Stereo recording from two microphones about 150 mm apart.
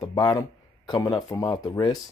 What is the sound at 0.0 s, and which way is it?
Speech, 30° left (ahead or behind).